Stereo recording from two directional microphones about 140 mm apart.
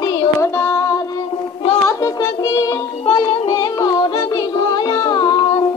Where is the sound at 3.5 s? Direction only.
25° left (ahead or behind).